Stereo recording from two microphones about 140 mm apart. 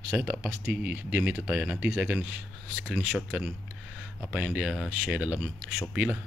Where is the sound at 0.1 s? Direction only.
10° right (ahead or behind).